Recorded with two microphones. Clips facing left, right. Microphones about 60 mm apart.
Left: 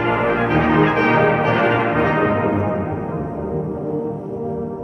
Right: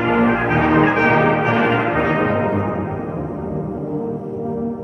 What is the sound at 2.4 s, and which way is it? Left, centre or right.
Music, centre.